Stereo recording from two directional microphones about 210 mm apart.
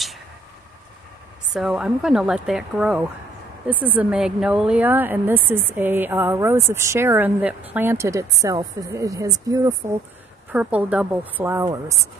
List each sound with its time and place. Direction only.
1.5 s speech: 5° right (ahead or behind)